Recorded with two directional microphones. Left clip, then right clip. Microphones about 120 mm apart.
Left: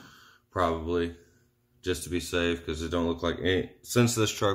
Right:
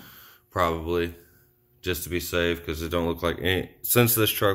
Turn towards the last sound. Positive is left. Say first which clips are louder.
# right 4 dB
turn(degrees=0)  # may be behind; listen again after turning